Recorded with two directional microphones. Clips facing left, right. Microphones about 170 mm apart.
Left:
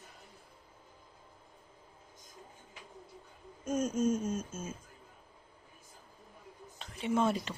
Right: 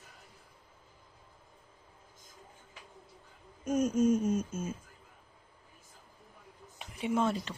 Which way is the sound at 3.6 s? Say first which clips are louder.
Right 3 dB; 10° right (ahead or behind).